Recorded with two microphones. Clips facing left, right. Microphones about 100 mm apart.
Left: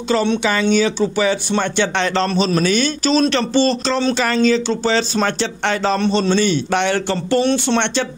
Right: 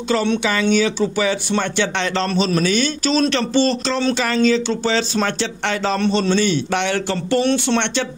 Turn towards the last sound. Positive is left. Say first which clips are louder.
# left 1 dB
turn(degrees=35)  # may be behind; listen again after turning